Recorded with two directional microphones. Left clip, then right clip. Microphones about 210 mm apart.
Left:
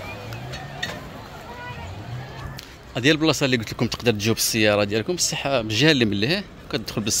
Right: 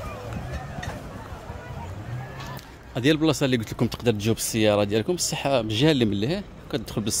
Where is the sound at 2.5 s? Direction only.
5° right (ahead or behind).